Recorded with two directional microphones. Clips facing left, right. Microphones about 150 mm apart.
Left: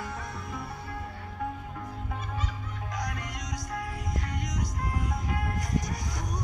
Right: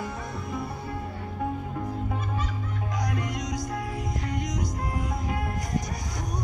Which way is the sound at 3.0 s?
15° right (ahead or behind).